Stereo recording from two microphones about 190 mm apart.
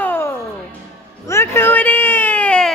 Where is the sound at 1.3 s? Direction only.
15° left (ahead or behind).